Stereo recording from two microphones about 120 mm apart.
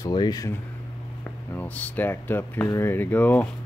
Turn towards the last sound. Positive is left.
turn(degrees=15)  # may be behind; listen again after turning